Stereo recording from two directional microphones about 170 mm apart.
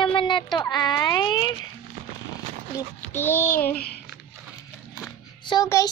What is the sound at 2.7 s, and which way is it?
Speech, 10° left (ahead or behind).